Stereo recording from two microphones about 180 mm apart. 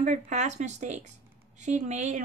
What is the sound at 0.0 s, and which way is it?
A woman's voice, 40° right (ahead or behind).